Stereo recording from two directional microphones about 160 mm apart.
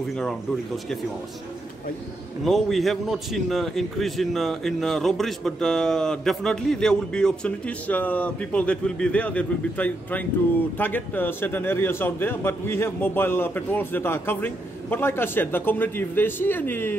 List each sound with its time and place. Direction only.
2.4 s a man's voice: centre (ahead or behind)